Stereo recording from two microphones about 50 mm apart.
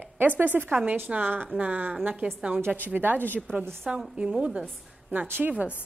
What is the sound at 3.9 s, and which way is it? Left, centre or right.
A woman's voice, right.